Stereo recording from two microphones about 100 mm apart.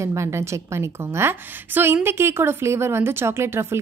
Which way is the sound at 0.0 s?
30° right (ahead or behind).